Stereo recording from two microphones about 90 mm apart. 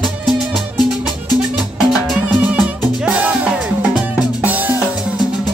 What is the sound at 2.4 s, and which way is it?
Music, 15° right (ahead or behind).